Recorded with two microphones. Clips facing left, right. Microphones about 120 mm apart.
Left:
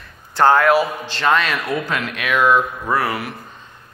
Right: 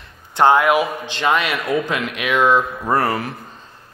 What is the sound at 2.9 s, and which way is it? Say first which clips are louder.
Speech: right 3 dB; 35° right (ahead or behind).